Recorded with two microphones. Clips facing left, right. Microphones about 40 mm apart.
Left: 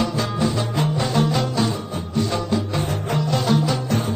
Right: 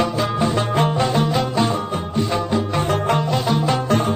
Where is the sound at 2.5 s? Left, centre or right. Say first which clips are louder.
Right 4 dB; right.